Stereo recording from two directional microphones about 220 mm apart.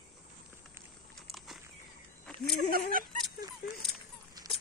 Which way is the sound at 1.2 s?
Centre (ahead or behind).